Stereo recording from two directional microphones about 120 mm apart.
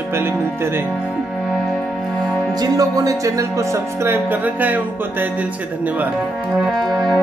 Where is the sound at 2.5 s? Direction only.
30° right (ahead or behind); by 5.2 s 15° right (ahead or behind).